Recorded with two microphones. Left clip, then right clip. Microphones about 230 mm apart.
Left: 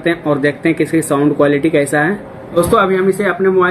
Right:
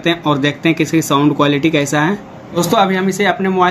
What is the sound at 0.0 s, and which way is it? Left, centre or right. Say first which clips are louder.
Speech: left 1 dB; right.